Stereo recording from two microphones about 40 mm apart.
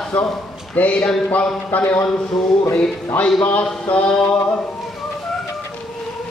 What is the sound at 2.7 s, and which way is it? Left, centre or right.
Speech, left.